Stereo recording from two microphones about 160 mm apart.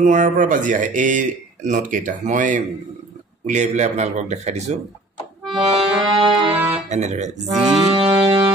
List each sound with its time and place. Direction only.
0.0 s speech: 50° right (ahead or behind)
5.6 s accordion: 30° right (ahead or behind); by 7.2 s 45° right (ahead or behind)
7.5 s speech: 45° right (ahead or behind)
7.9 s music: 30° right (ahead or behind)